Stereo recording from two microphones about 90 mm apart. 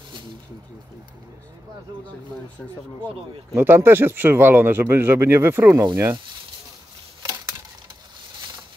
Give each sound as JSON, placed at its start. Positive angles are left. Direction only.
{"t": 3.5, "sound": "speech", "side_deg": -25}